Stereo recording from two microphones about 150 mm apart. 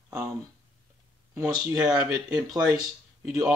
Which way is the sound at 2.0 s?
5° right (ahead or behind).